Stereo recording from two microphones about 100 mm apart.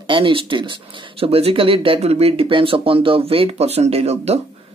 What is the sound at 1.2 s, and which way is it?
Speech, 70° right (ahead or behind).